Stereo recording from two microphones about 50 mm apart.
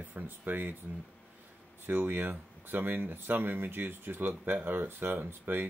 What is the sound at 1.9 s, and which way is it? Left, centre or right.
Speech, right.